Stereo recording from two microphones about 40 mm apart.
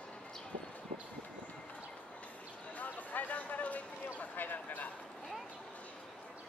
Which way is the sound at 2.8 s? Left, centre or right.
Left.